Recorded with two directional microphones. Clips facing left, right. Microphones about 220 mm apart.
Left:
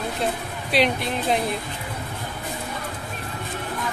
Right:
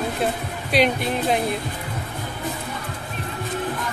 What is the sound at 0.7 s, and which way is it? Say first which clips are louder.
Speech: right 2 dB; centre (ahead or behind).